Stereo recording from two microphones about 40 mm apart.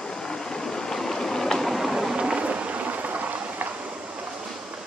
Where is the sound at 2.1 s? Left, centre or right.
Right.